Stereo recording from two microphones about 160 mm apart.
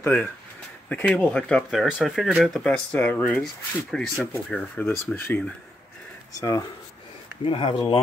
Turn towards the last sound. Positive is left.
turn(degrees=30)  # may be behind; listen again after turning